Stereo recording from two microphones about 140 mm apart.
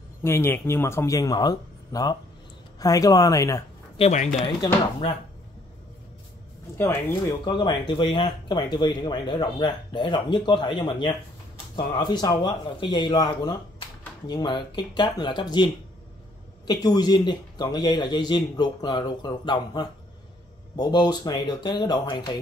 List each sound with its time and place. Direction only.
0.2 s speech: 15° left (ahead or behind)
4.1 s speech: 60° left (ahead or behind)
6.8 s speech: 20° left (ahead or behind)
7.4 s speech: 30° left (ahead or behind)